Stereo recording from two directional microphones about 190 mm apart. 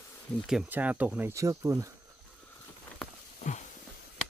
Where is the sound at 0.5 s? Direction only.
5° right (ahead or behind).